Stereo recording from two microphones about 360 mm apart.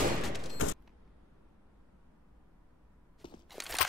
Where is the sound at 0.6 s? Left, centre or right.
Left.